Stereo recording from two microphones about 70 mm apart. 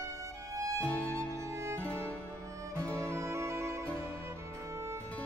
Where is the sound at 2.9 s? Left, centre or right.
Right.